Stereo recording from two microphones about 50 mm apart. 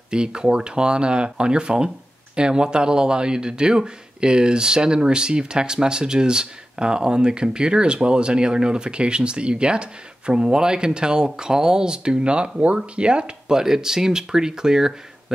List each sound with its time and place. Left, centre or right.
0.1 s speech: centre